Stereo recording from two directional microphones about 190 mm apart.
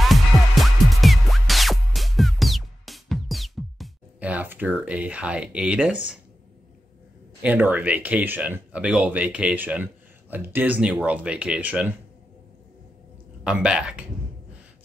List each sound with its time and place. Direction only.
0.0 s music: centre (ahead or behind)
7.4 s speech: 10° right (ahead or behind)
13.4 s speech: 5° right (ahead or behind)